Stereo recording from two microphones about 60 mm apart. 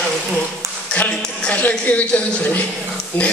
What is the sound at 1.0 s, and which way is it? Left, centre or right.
Speech, left.